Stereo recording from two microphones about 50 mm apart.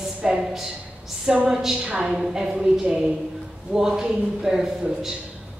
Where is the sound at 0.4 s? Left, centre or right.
Centre.